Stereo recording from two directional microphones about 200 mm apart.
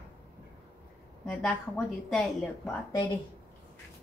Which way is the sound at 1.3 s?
5° left (ahead or behind).